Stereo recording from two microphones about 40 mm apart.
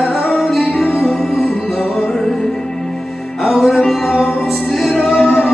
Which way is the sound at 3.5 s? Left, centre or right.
Centre.